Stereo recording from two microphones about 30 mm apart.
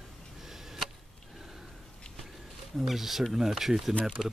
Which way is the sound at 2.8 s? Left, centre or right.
Centre.